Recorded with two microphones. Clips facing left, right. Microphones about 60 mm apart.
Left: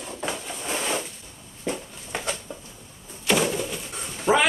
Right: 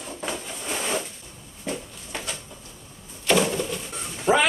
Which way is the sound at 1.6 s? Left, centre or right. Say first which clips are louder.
Left 2 dB; left.